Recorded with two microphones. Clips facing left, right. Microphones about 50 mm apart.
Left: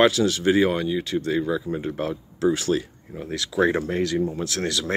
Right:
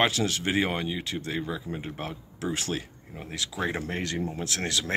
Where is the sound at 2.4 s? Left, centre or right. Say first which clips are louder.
Left 9 dB; right.